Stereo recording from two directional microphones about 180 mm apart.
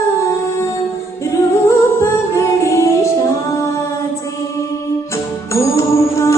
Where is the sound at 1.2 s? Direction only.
15° left (ahead or behind).